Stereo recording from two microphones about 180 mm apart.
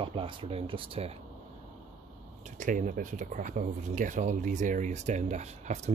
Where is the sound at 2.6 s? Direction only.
45° right (ahead or behind).